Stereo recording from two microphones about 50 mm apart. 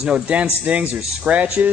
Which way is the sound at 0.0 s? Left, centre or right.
Centre.